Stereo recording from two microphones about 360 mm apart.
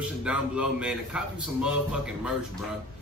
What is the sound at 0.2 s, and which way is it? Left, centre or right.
A man's voice, centre.